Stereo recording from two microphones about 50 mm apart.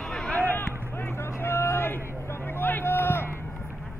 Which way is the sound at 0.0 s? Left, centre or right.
Centre.